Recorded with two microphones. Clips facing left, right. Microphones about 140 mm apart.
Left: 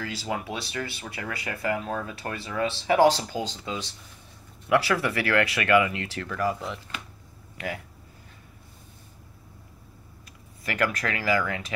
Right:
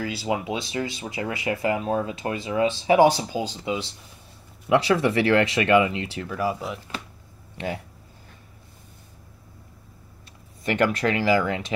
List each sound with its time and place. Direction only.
0.0 s speech: 15° right (ahead or behind)
7.5 s speech: 25° right (ahead or behind)
10.6 s speech: 25° right (ahead or behind)